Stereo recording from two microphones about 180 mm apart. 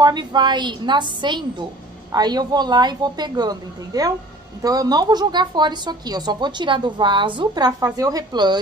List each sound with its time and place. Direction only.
0.0 s a woman's voice: 25° right (ahead or behind)